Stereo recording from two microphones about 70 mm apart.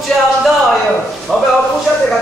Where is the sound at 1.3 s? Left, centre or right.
Centre.